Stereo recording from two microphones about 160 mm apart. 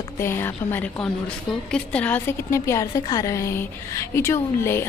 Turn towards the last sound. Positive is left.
turn(degrees=15)  # may be behind; listen again after turning